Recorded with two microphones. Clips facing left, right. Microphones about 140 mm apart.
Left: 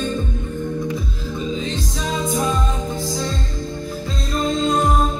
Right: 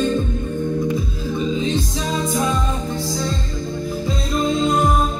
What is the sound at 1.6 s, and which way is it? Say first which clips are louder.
Music: right 4 dB; centre (ahead or behind).